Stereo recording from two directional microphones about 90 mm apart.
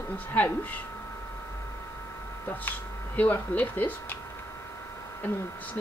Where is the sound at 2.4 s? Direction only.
20° left (ahead or behind).